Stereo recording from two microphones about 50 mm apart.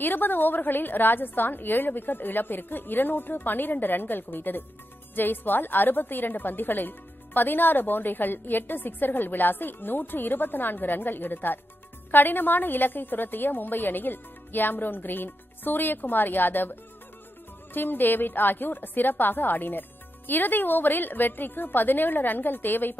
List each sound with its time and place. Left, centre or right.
0.0 s a woman's voice: left
17.7 s a woman's voice: left